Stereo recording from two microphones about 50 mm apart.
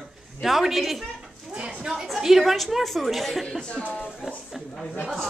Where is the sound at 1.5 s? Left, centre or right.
Centre.